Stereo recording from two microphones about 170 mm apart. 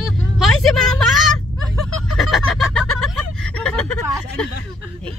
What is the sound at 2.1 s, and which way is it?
Chicken, centre (ahead or behind).